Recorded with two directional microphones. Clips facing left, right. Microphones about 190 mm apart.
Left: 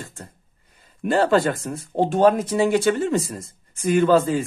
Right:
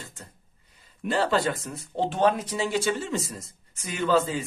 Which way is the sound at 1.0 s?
50° left (ahead or behind).